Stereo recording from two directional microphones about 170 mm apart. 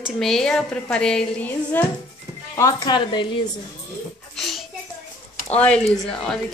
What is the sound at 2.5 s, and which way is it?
Speech, 20° left (ahead or behind).